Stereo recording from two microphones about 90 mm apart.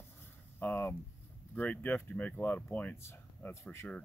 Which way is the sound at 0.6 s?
20° left (ahead or behind).